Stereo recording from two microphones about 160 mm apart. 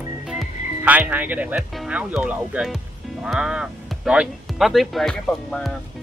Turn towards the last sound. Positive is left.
turn(degrees=5)  # may be behind; listen again after turning